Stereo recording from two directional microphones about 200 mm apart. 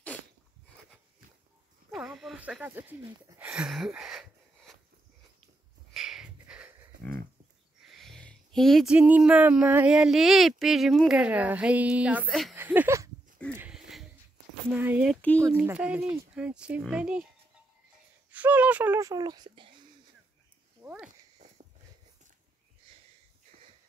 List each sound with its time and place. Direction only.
1.9 s speech: centre (ahead or behind)
5.9 s a sound: centre (ahead or behind)
7.8 s speech: centre (ahead or behind)
12.5 s a sound: 10° right (ahead or behind)
14.7 s speech: 10° right (ahead or behind)
18.3 s speech: 10° right (ahead or behind); by 19.9 s 25° right (ahead or behind)
20.8 s speech: 10° right (ahead or behind)